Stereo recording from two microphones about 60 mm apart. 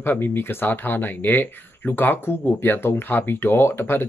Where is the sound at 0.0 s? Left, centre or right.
Left.